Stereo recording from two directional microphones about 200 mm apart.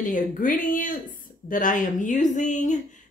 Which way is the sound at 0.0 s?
40° left (ahead or behind).